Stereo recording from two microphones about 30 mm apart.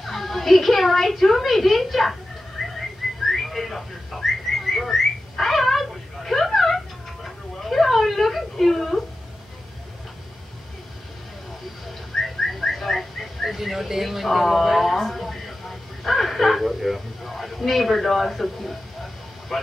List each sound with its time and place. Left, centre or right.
0.0 s a woman's voice: centre
2.6 s whistling: centre
5.4 s cat: centre
7.6 s whimper: centre
12.1 s bird: centre
12.5 s a sound: centre
16.0 s a woman's voice: centre